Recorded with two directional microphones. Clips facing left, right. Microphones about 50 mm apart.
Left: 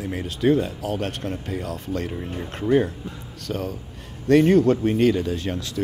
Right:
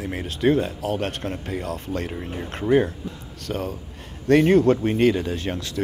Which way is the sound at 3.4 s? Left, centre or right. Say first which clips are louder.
Even; right.